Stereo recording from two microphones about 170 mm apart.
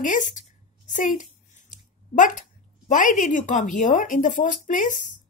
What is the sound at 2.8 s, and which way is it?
Speech, 50° left (ahead or behind).